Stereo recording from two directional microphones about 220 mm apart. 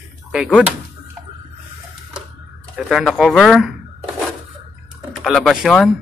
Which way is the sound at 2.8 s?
Centre (ahead or behind).